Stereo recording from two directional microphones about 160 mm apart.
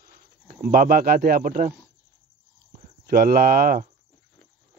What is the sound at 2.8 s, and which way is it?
Speech, 70° right (ahead or behind).